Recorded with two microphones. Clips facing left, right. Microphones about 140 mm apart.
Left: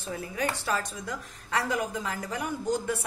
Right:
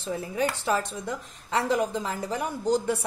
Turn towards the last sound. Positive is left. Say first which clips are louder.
# right 4 dB
turn(degrees=-35)  # may be behind; listen again after turning